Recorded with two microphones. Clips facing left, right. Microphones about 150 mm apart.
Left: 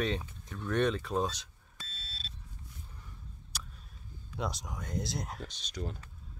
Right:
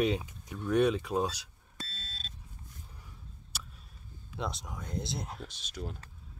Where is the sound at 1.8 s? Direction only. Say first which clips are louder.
Right 4 dB; 40° right (ahead or behind).